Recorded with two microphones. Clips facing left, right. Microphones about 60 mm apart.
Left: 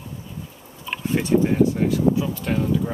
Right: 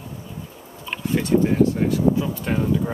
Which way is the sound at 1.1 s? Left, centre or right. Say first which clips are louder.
Even; centre.